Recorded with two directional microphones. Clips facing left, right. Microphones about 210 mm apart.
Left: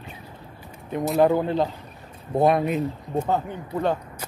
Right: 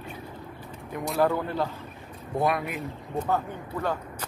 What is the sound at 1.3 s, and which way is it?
Speech, 20° left (ahead or behind).